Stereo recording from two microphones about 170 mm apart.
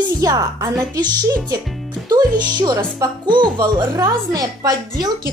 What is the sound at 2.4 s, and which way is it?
A woman's voice, 25° right (ahead or behind).